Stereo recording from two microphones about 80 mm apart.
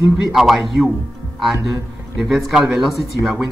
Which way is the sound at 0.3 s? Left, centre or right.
Centre.